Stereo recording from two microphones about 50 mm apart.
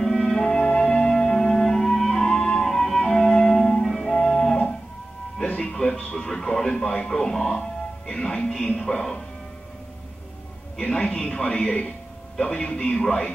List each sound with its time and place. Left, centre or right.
0.0 s music: centre
3.8 s music: centre
4.1 s music: centre
6.1 s television: centre
6.7 s a man's voice: left
10.8 s speech: left